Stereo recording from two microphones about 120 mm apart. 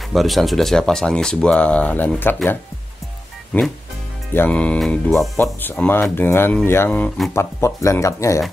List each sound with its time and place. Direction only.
0.1 s speech: centre (ahead or behind); by 2.6 s 15° left (ahead or behind)
4.3 s speech: 15° left (ahead or behind)
5.4 s speech: 15° left (ahead or behind)